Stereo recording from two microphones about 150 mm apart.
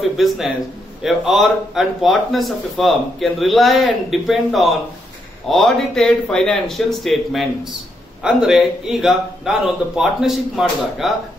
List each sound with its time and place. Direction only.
0.2 s speech: centre (ahead or behind)